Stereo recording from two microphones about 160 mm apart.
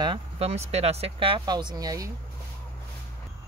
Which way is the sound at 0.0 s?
35° right (ahead or behind).